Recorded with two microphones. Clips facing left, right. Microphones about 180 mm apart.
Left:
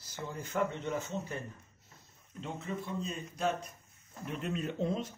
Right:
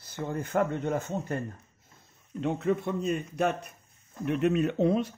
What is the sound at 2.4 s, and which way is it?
Speech, 60° right (ahead or behind).